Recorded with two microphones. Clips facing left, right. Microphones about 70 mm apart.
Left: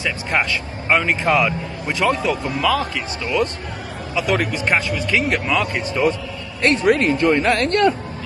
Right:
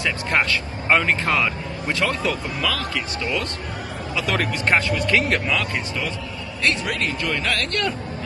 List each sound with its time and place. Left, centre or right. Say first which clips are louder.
0.0 s speech: left 1 dB; centre
4.4 s speech: left 1 dB; centre
6.6 s speech: left 8 dB; left